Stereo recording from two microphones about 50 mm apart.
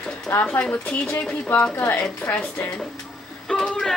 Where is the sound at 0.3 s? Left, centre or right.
Left.